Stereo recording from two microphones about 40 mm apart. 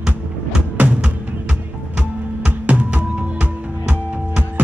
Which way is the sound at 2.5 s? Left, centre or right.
Right.